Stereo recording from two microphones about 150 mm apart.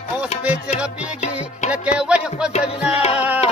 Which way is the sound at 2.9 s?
40° left (ahead or behind).